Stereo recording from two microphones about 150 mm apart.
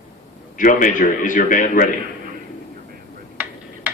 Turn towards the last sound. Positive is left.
turn(degrees=-10)  # may be behind; listen again after turning